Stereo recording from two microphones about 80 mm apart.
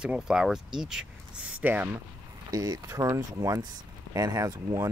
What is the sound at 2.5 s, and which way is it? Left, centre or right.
Speech, right.